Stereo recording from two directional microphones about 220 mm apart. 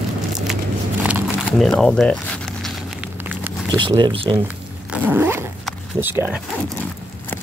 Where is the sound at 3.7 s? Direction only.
20° right (ahead or behind).